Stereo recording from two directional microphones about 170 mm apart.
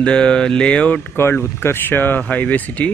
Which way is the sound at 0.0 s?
5° left (ahead or behind).